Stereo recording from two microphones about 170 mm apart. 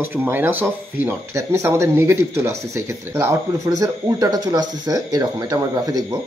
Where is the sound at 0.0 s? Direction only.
10° right (ahead or behind).